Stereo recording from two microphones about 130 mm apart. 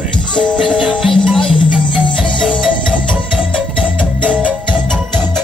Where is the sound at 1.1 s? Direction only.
5° left (ahead or behind).